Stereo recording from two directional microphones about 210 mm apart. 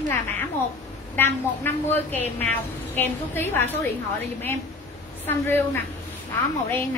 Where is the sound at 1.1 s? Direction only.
10° left (ahead or behind).